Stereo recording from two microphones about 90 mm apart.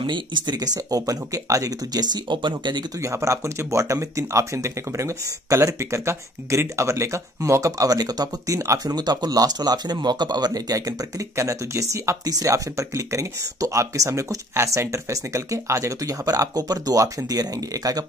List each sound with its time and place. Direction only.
0.0 s speech: 60° right (ahead or behind)
0.7 s speech: 40° right (ahead or behind)
3.0 s speech: 35° right (ahead or behind)